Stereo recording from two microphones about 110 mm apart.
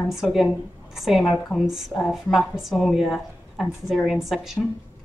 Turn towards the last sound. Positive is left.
turn(degrees=0)  # may be behind; listen again after turning